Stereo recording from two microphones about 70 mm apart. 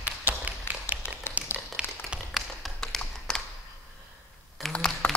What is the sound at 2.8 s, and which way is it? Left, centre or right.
Tap, centre.